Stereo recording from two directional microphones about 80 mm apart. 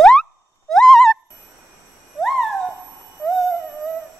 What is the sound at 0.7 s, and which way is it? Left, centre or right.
Owl, centre.